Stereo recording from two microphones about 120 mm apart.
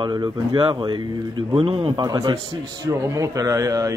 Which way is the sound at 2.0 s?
30° right (ahead or behind).